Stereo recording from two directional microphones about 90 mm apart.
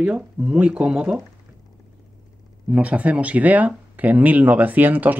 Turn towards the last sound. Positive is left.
turn(degrees=-20)  # may be behind; listen again after turning